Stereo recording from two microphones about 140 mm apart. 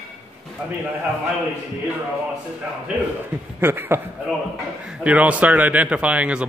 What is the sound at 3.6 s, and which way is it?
Speech, 15° right (ahead or behind).